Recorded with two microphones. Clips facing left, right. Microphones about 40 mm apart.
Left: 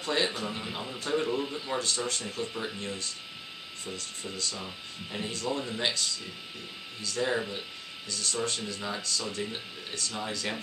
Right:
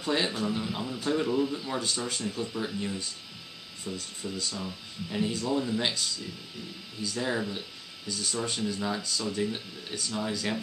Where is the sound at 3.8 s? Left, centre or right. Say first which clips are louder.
Right 3 dB; centre.